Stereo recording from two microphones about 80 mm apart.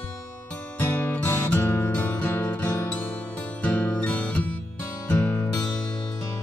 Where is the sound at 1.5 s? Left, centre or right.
Left.